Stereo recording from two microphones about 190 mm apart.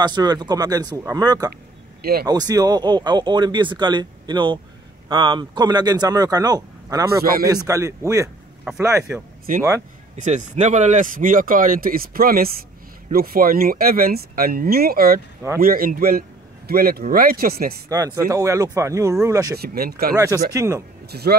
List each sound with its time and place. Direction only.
0.0 s speech: 20° right (ahead or behind)
2.0 s speech: 55° right (ahead or behind)
2.2 s speech: 20° right (ahead or behind)
10.1 s speech: 40° right (ahead or behind)
17.8 s speech: 20° right (ahead or behind)
19.5 s speech: 55° right (ahead or behind)
20.5 s speech: 15° right (ahead or behind)
21.1 s speech: 55° right (ahead or behind)